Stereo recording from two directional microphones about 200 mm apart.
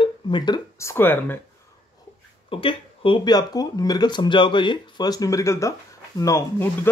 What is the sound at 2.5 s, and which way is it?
Speech, 25° left (ahead or behind).